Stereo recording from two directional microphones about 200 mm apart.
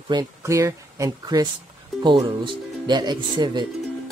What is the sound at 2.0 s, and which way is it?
Speech, 20° right (ahead or behind).